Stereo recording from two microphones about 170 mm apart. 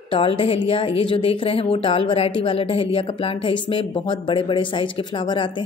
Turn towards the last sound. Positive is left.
turn(degrees=30)  # may be behind; listen again after turning